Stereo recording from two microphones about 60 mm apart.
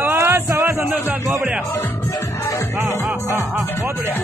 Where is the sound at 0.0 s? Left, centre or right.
Right.